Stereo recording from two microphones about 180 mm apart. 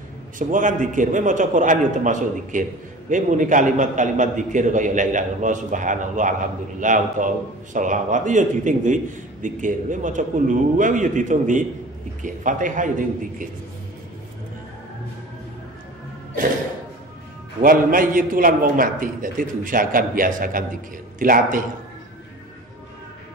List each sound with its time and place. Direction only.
0.4 s a man's voice: 45° right (ahead or behind)
17.6 s a man's voice: 50° right (ahead or behind)